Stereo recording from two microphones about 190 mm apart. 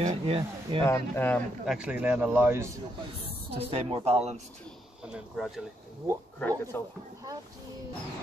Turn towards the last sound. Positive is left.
turn(degrees=10)  # may be behind; listen again after turning